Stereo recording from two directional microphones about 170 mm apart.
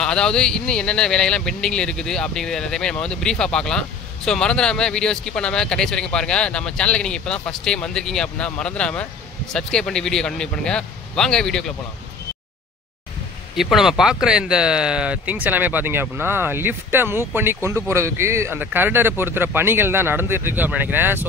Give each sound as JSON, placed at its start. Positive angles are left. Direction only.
{"t": 0.0, "sound": "speech", "side_deg": 5}
{"t": 13.6, "sound": "speech", "side_deg": 0}